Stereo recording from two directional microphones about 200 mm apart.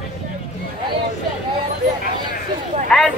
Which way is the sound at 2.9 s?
5° left (ahead or behind).